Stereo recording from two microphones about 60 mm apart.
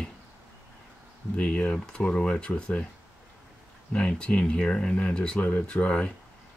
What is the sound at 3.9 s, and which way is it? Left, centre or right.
Speech, centre.